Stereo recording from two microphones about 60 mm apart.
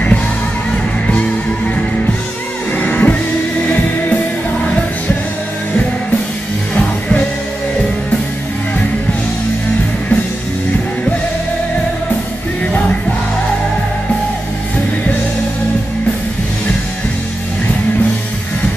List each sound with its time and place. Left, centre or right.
2.8 s music: left
6.7 s music: left